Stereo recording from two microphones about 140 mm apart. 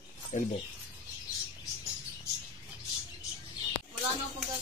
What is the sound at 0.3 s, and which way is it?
Speech, 60° left (ahead or behind).